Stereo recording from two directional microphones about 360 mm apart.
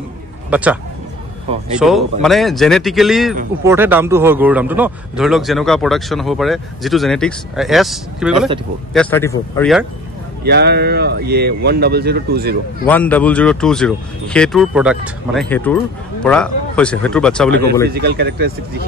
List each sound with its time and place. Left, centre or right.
0.5 s speech: centre
1.8 s a man's voice: centre
10.4 s speech: right
12.8 s a man's voice: centre
17.8 s speech: right